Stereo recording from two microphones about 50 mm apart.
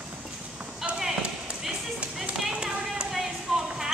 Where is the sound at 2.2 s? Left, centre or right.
Centre.